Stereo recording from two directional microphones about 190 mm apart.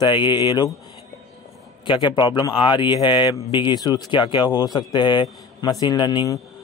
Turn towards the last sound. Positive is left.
turn(degrees=20)  # may be behind; listen again after turning